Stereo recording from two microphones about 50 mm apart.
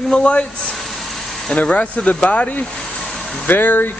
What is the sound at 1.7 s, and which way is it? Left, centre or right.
Speech, left.